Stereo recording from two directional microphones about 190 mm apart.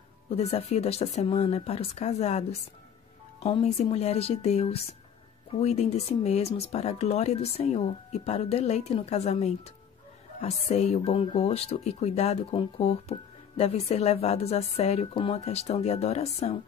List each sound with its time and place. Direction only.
0.3 s speech: 30° left (ahead or behind)